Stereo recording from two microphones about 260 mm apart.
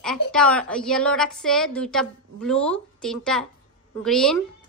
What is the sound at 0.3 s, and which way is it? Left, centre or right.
A woman's voice, centre.